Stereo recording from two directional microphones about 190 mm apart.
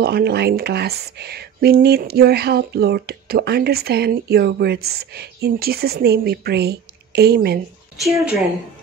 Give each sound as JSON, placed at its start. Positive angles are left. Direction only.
{"t": 0.0, "sound": "speech", "side_deg": -60}